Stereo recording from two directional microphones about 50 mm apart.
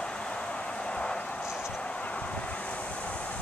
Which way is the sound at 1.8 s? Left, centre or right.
Left.